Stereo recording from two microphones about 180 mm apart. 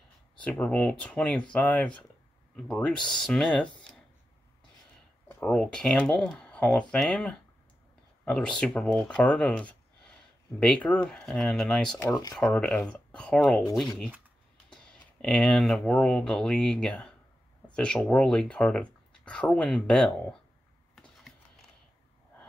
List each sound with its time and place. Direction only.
0.4 s speech: 10° left (ahead or behind)
5.4 s speech: 5° left (ahead or behind)
12.0 s speech: 20° left (ahead or behind)
12.4 s speech: 5° left (ahead or behind)
20.9 s a sound: centre (ahead or behind)